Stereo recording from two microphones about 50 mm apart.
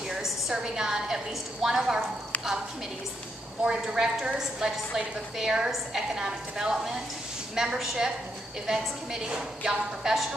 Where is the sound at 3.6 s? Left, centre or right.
Centre.